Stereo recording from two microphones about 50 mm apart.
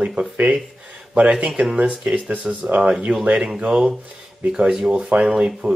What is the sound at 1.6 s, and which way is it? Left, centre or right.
Speech, right.